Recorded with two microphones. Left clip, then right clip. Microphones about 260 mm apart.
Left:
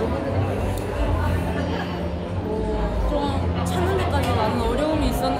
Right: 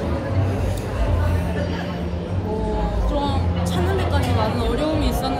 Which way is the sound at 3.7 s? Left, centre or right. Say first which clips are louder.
Even; centre.